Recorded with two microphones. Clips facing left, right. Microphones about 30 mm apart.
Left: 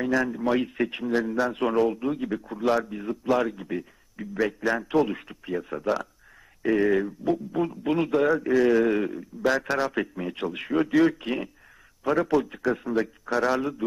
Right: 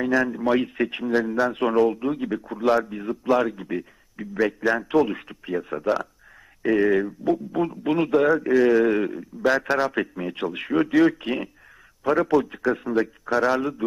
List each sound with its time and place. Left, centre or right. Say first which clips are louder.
0.0 s a man's voice: right 3 dB; centre